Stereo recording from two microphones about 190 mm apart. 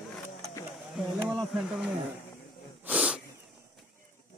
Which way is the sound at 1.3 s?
Centre (ahead or behind).